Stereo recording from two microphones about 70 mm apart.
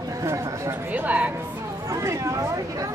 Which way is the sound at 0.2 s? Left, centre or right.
Right.